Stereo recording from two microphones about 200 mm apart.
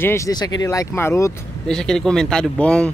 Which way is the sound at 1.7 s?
5° left (ahead or behind).